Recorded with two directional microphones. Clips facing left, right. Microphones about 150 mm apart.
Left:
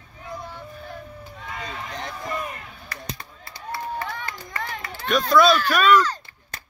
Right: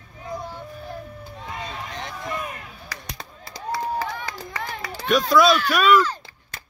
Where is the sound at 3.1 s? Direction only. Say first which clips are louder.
Right 3 dB; 90° right.